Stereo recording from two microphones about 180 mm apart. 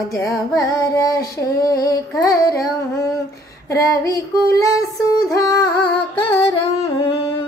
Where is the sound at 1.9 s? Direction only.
20° left (ahead or behind).